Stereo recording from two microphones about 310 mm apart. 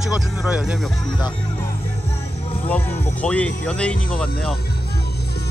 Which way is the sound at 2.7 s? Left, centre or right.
Centre.